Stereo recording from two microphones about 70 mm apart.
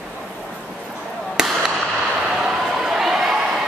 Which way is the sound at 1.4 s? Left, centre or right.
Centre.